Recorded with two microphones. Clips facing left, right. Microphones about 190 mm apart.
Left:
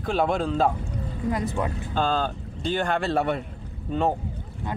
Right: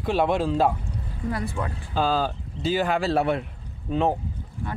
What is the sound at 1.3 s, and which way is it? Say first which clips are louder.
Speech: left 2 dB; 20° left (ahead or behind).